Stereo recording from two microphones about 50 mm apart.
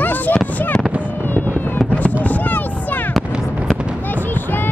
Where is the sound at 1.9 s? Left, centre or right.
Left.